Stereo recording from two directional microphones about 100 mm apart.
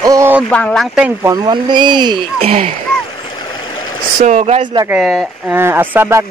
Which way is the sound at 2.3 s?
75° right (ahead or behind).